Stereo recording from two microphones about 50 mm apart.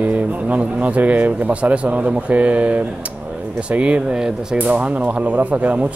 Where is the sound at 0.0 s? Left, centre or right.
Right.